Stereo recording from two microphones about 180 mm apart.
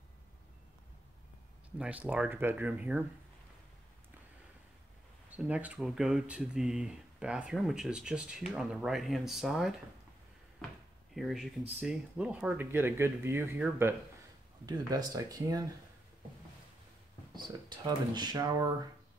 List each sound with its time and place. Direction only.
1.8 s speech: 10° right (ahead or behind)
5.3 s speech: 10° right (ahead or behind)
11.1 s speech: centre (ahead or behind); by 15.6 s 20° right (ahead or behind)
17.3 s speech: 25° right (ahead or behind)